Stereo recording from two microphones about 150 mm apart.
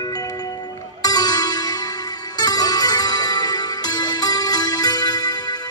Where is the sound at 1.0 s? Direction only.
25° left (ahead or behind).